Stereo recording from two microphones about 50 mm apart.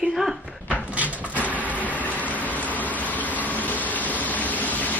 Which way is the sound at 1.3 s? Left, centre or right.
Left.